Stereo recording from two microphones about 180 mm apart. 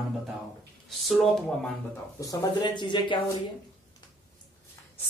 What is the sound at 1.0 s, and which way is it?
Speech, centre (ahead or behind).